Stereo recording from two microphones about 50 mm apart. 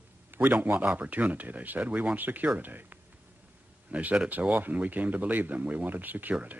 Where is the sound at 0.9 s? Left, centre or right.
Right.